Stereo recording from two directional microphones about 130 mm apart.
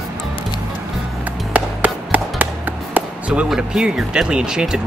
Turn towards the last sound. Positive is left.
turn(degrees=-5)  # may be behind; listen again after turning